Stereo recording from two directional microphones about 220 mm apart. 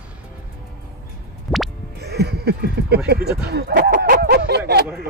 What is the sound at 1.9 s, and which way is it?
Music, 45° right (ahead or behind).